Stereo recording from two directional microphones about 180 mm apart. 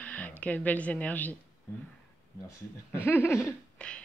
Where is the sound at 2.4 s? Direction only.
15° left (ahead or behind).